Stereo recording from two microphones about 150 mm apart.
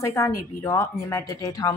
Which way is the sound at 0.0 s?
20° left (ahead or behind).